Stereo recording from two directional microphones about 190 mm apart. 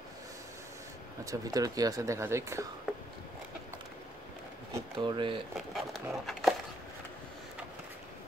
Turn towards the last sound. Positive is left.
turn(degrees=0)  # may be behind; listen again after turning